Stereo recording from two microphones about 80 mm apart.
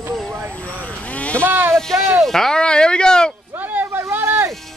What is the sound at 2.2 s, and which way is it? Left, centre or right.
Speech, centre.